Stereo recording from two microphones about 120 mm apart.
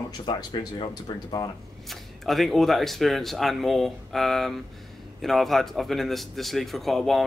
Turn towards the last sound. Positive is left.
turn(degrees=0)  # may be behind; listen again after turning